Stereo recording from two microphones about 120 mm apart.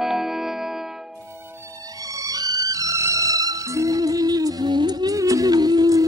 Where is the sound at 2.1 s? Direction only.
30° right (ahead or behind).